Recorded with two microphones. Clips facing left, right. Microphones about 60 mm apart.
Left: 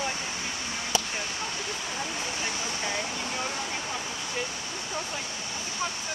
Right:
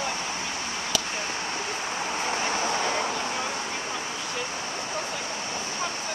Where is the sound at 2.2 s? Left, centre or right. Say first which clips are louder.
Right 6 dB; right.